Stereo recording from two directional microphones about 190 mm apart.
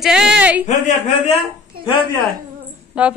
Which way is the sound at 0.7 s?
40° left (ahead or behind).